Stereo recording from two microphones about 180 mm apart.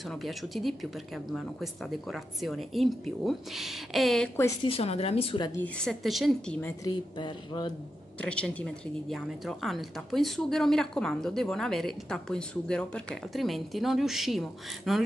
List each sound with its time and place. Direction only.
0.0 s a woman's voice: centre (ahead or behind)
4.6 s speech: 35° left (ahead or behind)
5.6 s a woman's voice: 5° left (ahead or behind)
6.8 s speech: 25° left (ahead or behind)
8.2 s a woman's voice: 5° left (ahead or behind)